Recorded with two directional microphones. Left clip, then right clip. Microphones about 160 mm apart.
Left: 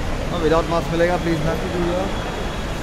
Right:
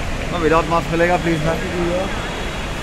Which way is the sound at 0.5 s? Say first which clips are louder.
Right 3 dB; 45° right (ahead or behind).